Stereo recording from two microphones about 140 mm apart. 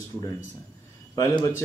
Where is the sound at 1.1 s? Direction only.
25° left (ahead or behind).